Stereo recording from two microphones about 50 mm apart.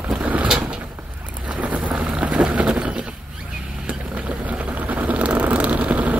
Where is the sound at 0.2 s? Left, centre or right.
Right.